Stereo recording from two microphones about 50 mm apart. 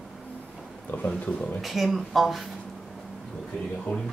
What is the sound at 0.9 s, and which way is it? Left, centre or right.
Speech, left.